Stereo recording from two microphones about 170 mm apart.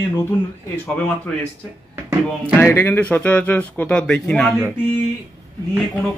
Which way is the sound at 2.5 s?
10° left (ahead or behind).